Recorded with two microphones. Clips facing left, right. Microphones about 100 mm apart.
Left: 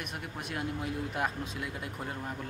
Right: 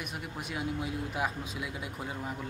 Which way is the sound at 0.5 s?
5° right (ahead or behind).